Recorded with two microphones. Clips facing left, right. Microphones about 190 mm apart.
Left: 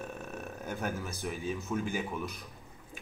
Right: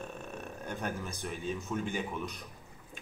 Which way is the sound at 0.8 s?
Centre (ahead or behind).